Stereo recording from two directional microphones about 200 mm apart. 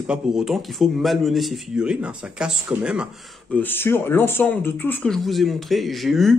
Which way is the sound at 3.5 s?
10° left (ahead or behind).